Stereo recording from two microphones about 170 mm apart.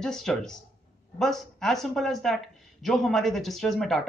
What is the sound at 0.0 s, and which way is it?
Speech, 5° left (ahead or behind).